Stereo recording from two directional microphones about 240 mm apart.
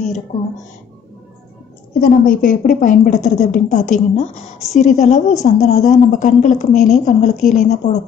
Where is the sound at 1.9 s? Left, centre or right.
Left.